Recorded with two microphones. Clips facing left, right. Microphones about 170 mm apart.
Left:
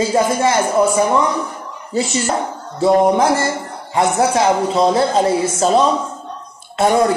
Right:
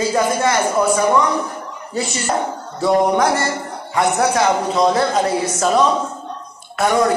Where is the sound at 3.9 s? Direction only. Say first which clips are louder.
Left 2 dB; 25° left (ahead or behind).